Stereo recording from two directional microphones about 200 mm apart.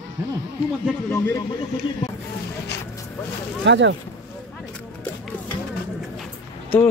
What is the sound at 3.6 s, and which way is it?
Speech, 65° right (ahead or behind).